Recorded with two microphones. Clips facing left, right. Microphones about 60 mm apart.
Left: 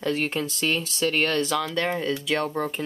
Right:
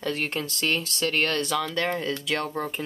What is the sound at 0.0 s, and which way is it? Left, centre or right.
Speech, centre.